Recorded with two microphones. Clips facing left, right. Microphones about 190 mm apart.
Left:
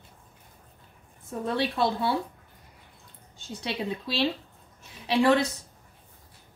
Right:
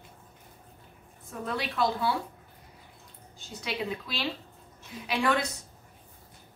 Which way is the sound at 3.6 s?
30° left (ahead or behind).